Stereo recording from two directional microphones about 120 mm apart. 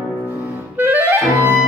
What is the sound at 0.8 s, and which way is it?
Clarinet, 15° right (ahead or behind).